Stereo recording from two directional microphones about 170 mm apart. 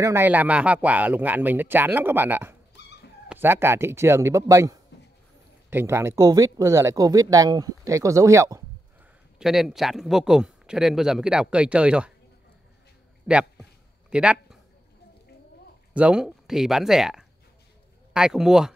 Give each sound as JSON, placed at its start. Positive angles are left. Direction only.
{"t": 0.0, "sound": "speech", "side_deg": -15}
{"t": 9.4, "sound": "speech", "side_deg": -5}
{"t": 13.3, "sound": "speech", "side_deg": -5}
{"t": 14.1, "sound": "a sound", "side_deg": -5}
{"t": 15.9, "sound": "speech", "side_deg": -5}